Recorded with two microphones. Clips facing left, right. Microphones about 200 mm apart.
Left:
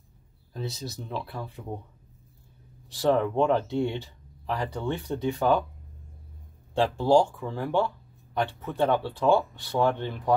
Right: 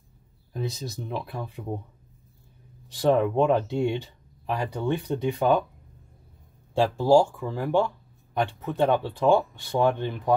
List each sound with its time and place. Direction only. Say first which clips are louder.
0.5 s speech: right 3 dB; 15° right (ahead or behind)
2.9 s speech: right 2 dB; 20° right (ahead or behind)
6.7 s speech: right 2 dB; 10° right (ahead or behind)